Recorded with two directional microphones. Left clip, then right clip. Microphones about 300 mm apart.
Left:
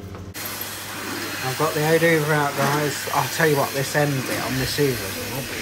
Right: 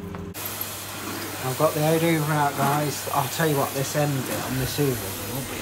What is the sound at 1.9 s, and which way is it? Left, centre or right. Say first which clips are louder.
Speech: left 5 dB; centre.